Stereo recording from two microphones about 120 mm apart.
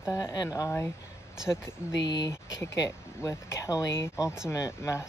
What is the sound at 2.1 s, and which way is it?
Speech, 35° left (ahead or behind).